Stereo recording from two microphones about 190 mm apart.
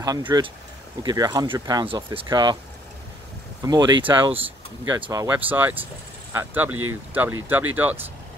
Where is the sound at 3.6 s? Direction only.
20° right (ahead or behind).